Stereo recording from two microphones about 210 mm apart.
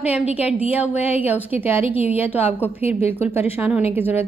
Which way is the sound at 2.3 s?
10° right (ahead or behind).